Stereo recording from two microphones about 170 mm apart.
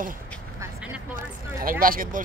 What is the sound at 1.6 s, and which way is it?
Speech, 55° right (ahead or behind).